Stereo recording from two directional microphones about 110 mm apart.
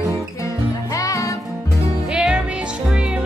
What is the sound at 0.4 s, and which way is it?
Music, 30° left (ahead or behind).